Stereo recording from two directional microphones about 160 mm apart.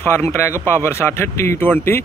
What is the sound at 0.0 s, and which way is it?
Speech, 15° left (ahead or behind).